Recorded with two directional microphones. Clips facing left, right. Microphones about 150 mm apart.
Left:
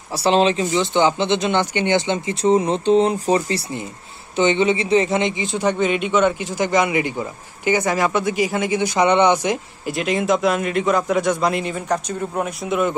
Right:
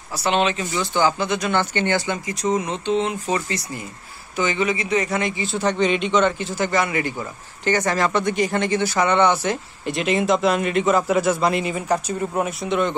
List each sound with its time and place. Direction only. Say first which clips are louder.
0.1 s speech: left 4 dB; 30° left (ahead or behind); by 9.6 s 15° left (ahead or behind)
9.8 s a man's voice: even; centre (ahead or behind)